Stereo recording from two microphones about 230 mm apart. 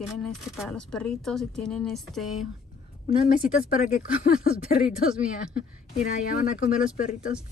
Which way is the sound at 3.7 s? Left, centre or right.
Left.